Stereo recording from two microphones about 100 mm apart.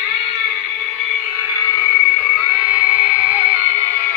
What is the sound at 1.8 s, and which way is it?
Frog, 20° left (ahead or behind).